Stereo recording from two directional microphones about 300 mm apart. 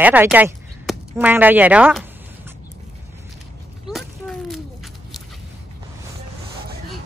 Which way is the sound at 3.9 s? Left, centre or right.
Centre.